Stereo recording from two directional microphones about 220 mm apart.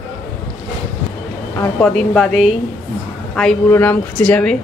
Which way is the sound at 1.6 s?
5° left (ahead or behind).